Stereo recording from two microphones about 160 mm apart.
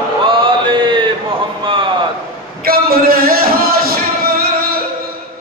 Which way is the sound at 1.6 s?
30° right (ahead or behind).